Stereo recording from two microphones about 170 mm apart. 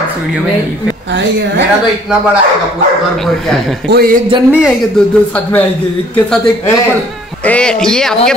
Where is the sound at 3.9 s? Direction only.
60° right (ahead or behind).